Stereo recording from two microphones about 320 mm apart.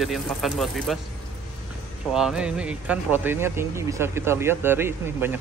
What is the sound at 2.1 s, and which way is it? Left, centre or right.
Speech, centre.